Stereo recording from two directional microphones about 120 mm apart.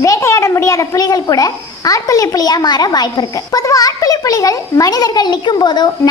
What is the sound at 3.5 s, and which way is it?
A child's voice, 30° left (ahead or behind).